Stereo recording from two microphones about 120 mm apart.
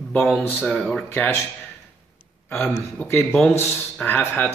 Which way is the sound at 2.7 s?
20° left (ahead or behind).